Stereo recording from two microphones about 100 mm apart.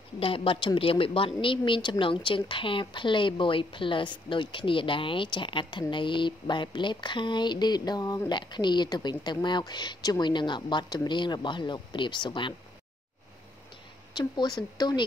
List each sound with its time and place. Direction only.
0.2 s a woman's voice: 65° left (ahead or behind)
14.1 s a woman's voice: 45° left (ahead or behind)